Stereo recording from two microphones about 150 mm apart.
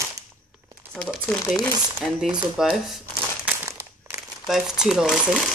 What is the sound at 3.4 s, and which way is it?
Crumpling, 20° right (ahead or behind).